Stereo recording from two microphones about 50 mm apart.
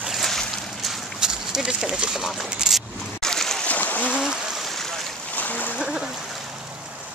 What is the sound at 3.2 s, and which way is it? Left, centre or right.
Boat, centre.